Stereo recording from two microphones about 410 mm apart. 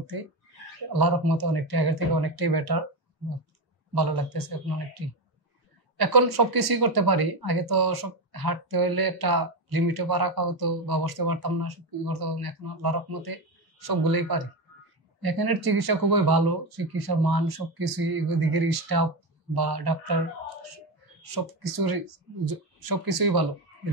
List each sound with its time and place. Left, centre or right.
0.9 s speech: right
3.9 s speech: right
5.9 s speech: right
21.2 s speech: right